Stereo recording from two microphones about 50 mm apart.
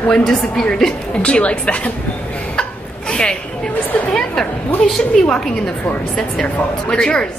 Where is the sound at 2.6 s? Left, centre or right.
Centre.